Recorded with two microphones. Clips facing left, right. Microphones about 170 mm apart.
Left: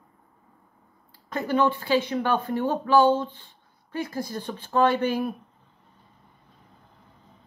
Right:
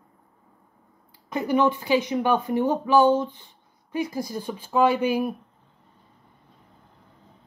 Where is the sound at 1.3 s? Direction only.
15° right (ahead or behind).